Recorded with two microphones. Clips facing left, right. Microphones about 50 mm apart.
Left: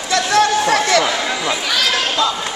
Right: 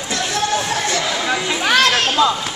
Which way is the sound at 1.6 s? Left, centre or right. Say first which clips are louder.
Right 4 dB; right.